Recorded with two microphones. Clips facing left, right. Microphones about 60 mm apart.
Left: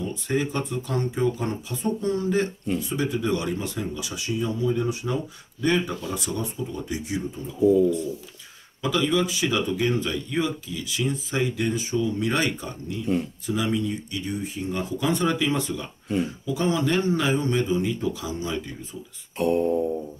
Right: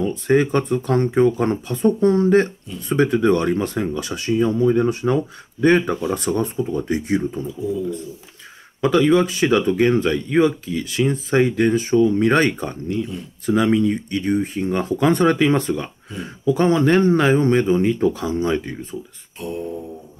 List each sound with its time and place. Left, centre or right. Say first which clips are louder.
0.0 s speech: right 9 dB; right
8.8 s speech: right 8 dB; right
19.3 s a sound: left 6 dB; left